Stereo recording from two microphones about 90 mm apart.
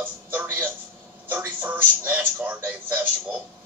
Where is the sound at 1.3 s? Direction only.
15° right (ahead or behind).